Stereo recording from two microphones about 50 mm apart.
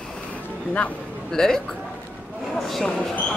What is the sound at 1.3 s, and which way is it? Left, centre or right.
Speech, centre.